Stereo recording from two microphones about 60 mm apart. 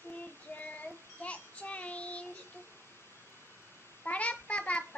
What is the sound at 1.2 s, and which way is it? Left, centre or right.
Child singing, left.